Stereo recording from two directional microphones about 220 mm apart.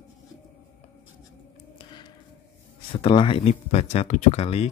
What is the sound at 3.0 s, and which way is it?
Speech, 25° left (ahead or behind).